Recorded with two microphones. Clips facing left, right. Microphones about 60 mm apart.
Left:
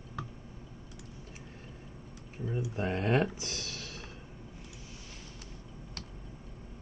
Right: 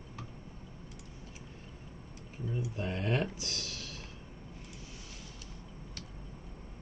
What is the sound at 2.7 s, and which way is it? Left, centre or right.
Speech, left.